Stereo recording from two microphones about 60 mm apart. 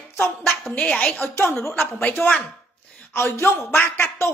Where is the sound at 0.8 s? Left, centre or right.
Centre.